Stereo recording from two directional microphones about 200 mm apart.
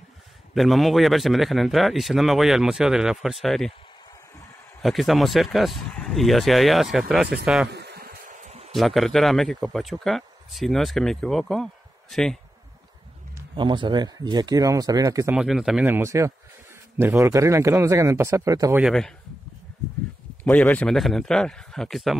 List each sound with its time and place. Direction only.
0.6 s speech: centre (ahead or behind)
4.8 s speech: centre (ahead or behind)
7.7 s a sound: 55° right (ahead or behind); by 8.7 s 35° right (ahead or behind)
8.7 s speech: centre (ahead or behind)
13.6 s speech: 25° right (ahead or behind)
15.3 s a man's voice: centre (ahead or behind)
18.8 s speech: centre (ahead or behind)
20.4 s speech: 5° left (ahead or behind)